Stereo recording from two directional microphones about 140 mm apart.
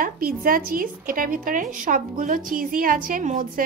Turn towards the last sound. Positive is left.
turn(degrees=-70)  # may be behind; listen again after turning